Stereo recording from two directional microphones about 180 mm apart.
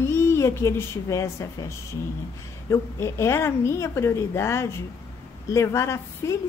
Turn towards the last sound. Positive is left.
turn(degrees=15)  # may be behind; listen again after turning